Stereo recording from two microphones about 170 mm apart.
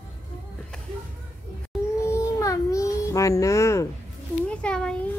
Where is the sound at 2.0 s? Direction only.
15° left (ahead or behind).